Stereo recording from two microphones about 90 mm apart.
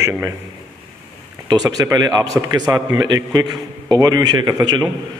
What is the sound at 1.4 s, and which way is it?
A man's voice, 45° right (ahead or behind).